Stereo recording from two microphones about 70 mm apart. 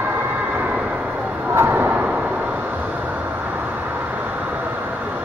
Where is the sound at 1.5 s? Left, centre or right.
Right.